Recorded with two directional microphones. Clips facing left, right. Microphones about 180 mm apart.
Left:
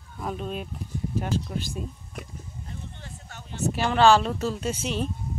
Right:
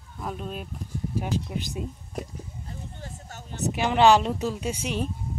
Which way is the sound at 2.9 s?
40° right (ahead or behind).